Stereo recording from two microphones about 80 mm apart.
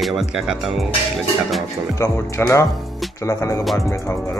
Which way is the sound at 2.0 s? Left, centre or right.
Left.